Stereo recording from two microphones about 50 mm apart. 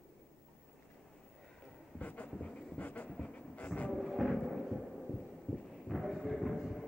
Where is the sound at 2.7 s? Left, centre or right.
Left.